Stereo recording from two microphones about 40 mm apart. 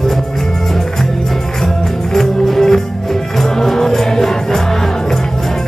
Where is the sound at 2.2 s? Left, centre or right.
Centre.